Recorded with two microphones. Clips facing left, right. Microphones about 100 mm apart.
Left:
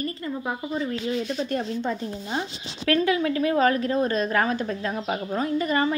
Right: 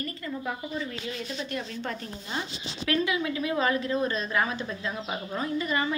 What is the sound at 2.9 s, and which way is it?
A woman's voice, 40° left (ahead or behind).